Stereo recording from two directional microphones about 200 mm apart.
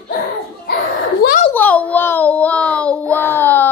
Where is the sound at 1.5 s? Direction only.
10° left (ahead or behind).